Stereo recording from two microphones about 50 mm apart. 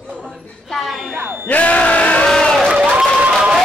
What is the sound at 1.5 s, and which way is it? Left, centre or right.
Music, left.